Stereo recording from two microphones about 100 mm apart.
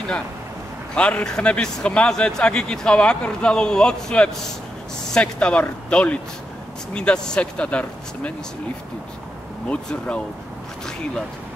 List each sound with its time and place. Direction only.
0.9 s speech: 10° left (ahead or behind)
9.7 s speech: 10° left (ahead or behind)